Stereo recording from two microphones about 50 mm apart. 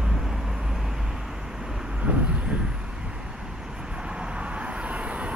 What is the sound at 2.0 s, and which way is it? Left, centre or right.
Vehicle, right.